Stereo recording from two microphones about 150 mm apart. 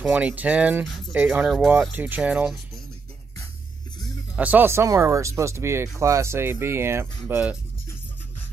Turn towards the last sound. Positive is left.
turn(degrees=-15)  # may be behind; listen again after turning